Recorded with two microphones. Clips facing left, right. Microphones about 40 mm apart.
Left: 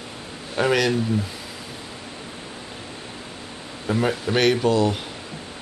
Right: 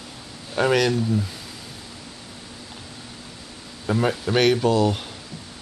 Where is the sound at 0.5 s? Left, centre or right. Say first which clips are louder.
Even; centre.